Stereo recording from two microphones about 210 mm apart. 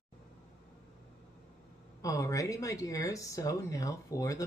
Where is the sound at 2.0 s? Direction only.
15° left (ahead or behind).